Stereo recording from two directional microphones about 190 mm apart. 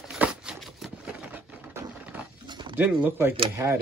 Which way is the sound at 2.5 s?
25° right (ahead or behind).